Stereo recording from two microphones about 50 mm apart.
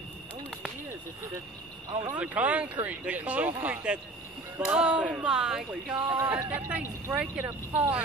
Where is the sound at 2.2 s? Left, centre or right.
Right.